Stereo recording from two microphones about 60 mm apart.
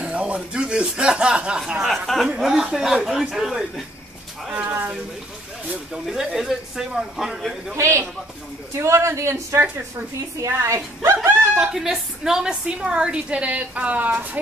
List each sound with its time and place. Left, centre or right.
0.0 s speech: right
1.8 s a man's voice: centre
2.2 s a woman's voice: centre
4.6 s speech: right
6.0 s a man's voice: centre
7.7 s a man's voice: right
11.5 s a woman's voice: centre; by 14.4 s right